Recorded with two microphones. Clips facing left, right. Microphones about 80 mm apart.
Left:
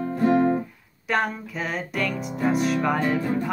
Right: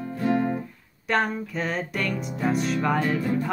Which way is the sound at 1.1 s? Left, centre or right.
Centre.